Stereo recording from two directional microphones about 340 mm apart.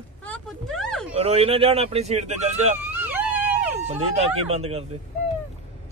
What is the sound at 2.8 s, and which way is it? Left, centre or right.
Vehicle, centre.